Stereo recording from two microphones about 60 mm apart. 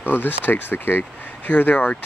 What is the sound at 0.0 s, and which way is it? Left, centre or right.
Speech, left.